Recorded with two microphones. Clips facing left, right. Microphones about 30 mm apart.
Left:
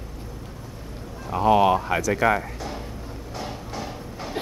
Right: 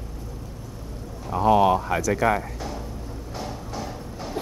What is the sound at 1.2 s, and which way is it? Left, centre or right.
Speech, centre.